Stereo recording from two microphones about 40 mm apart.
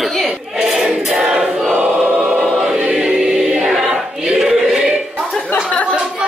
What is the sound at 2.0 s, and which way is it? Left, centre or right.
Choir, right.